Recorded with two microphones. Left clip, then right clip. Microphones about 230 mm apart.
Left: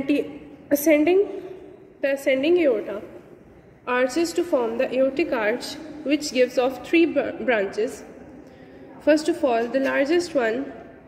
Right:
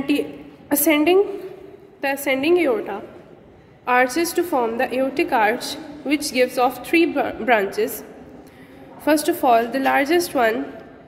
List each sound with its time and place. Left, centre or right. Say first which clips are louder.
0.7 s a woman's voice: right 1 dB; centre
9.0 s a woman's voice: right 2 dB; centre